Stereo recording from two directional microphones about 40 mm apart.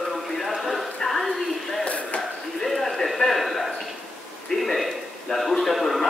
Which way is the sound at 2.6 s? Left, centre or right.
Centre.